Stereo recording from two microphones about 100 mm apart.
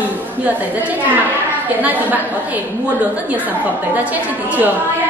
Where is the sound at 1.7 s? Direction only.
15° right (ahead or behind).